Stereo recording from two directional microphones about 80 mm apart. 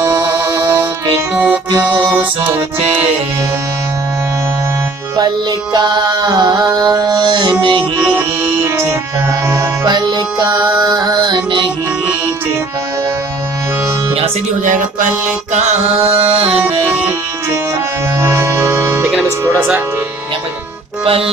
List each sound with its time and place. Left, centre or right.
0.0 s music: right
1.3 s music: centre
5.1 s music: right
8.2 s music: right
9.8 s music: right
16.5 s music: right
18.2 s music: right